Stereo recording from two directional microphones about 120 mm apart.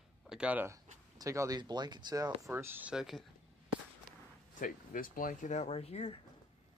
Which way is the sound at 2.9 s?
5° right (ahead or behind).